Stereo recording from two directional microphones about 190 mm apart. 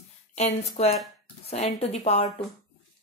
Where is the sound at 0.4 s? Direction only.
35° left (ahead or behind).